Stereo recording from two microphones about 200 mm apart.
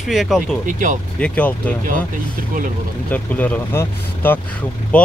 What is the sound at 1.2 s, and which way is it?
Speech, 5° left (ahead or behind).